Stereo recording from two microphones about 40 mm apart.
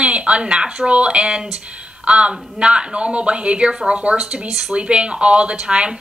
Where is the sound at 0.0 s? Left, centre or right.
Right.